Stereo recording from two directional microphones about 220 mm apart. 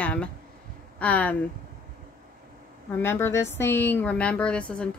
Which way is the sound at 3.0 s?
10° left (ahead or behind).